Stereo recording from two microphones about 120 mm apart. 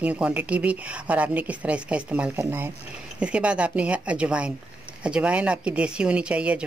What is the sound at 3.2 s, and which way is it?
Speech, 10° right (ahead or behind).